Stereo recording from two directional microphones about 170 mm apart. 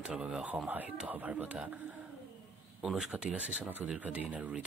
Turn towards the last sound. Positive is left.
turn(degrees=-10)  # may be behind; listen again after turning